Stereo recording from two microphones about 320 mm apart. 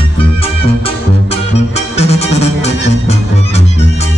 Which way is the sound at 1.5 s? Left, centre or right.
Centre.